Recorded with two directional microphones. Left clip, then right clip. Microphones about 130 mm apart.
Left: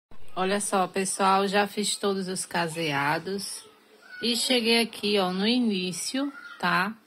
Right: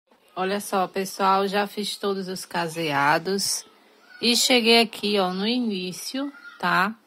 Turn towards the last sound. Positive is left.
turn(degrees=-15)  # may be behind; listen again after turning